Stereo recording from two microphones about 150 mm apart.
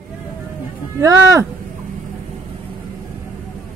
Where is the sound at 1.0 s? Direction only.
20° right (ahead or behind).